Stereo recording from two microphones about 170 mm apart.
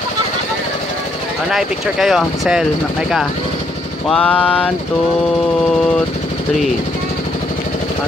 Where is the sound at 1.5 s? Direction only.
Centre (ahead or behind).